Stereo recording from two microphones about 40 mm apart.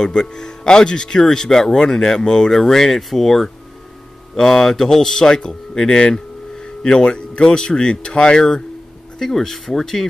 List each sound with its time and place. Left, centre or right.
0.0 s speech: centre
9.2 s speech: centre